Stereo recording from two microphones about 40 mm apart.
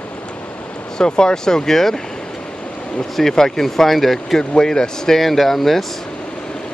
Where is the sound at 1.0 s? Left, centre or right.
Centre.